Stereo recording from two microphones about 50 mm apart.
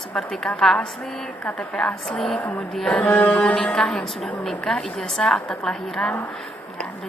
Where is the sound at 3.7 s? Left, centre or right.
Centre.